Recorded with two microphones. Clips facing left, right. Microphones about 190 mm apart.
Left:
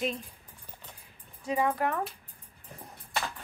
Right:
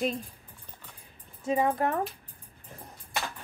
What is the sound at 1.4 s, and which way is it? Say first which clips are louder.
Speech: right 2 dB; 30° right (ahead or behind).